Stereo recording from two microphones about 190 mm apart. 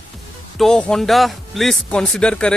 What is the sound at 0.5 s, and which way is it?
Speech, centre (ahead or behind).